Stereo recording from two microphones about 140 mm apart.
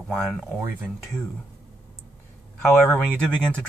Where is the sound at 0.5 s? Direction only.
15° right (ahead or behind).